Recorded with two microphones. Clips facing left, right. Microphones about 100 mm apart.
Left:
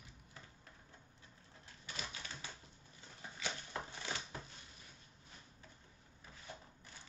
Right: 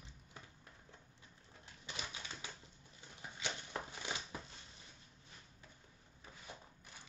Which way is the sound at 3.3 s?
20° right (ahead or behind).